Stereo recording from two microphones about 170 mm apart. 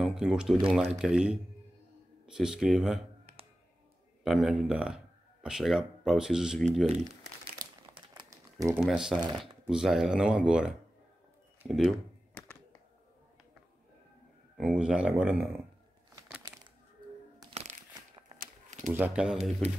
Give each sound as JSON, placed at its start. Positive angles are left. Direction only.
{"t": 0.0, "sound": "speech", "side_deg": 0}
{"t": 4.2, "sound": "speech", "side_deg": 0}
{"t": 8.1, "sound": "a sound", "side_deg": -20}
{"t": 8.7, "sound": "speech", "side_deg": -5}
{"t": 14.6, "sound": "speech", "side_deg": -5}
{"t": 17.5, "sound": "a sound", "side_deg": -40}
{"t": 18.9, "sound": "speech", "side_deg": -5}